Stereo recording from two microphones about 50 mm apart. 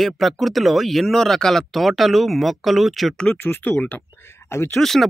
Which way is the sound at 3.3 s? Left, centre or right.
Left.